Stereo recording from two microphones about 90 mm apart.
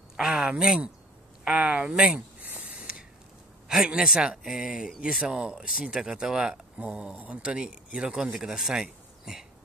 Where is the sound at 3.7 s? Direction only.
10° right (ahead or behind).